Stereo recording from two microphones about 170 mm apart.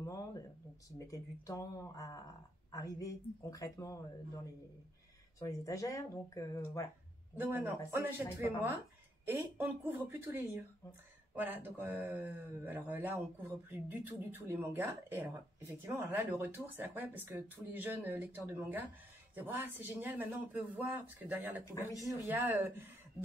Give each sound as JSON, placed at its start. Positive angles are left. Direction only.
{"t": 0.0, "sound": "a sound", "side_deg": 20}
{"t": 0.8, "sound": "speech", "side_deg": 20}
{"t": 5.4, "sound": "speech", "side_deg": 20}
{"t": 7.3, "sound": "speech", "side_deg": -10}
{"t": 21.7, "sound": "speech", "side_deg": 20}
{"t": 22.3, "sound": "speech", "side_deg": -10}